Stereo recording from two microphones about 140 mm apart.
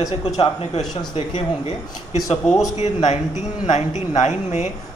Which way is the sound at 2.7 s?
50° left (ahead or behind).